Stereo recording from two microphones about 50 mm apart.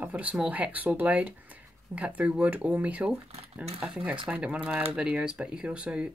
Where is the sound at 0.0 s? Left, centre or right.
Right.